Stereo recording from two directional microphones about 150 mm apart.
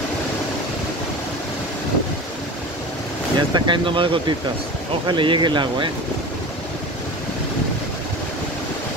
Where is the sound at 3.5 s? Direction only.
30° right (ahead or behind).